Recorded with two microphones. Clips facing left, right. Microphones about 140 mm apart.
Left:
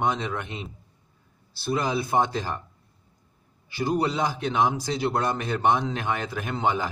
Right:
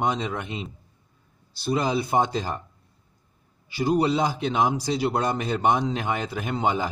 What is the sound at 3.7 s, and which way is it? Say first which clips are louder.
A man's voice: right 3 dB; 15° right (ahead or behind).